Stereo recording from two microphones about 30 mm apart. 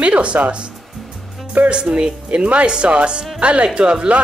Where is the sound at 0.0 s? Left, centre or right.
Right.